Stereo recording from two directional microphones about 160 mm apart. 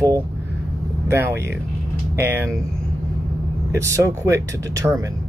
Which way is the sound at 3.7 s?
20° right (ahead or behind).